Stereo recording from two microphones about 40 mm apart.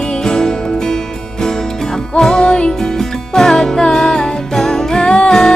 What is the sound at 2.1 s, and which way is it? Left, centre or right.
Music, centre.